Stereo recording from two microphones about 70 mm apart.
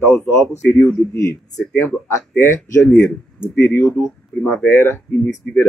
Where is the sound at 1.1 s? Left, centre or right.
Left.